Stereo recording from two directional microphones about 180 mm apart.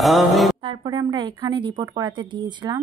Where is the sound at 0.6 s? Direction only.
25° right (ahead or behind).